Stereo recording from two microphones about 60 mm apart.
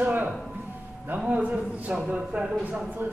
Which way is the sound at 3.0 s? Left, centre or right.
Right.